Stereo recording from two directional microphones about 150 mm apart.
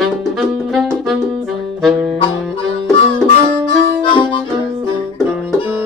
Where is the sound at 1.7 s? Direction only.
Centre (ahead or behind).